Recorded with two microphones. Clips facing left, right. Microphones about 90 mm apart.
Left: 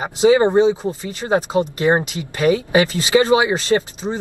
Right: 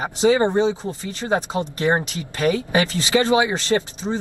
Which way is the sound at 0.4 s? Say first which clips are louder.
Left 4 dB; 35° left (ahead or behind).